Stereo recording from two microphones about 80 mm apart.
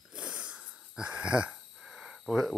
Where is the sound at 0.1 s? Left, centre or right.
Centre.